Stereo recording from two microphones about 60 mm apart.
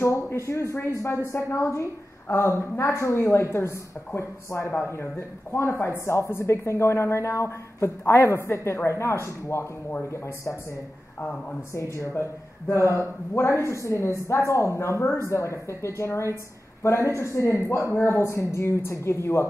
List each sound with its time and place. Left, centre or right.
0.0 s speech: left
8.0 s speech: left
11.7 s a woman's voice: left